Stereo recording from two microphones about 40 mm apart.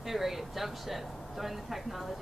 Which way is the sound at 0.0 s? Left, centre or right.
Centre.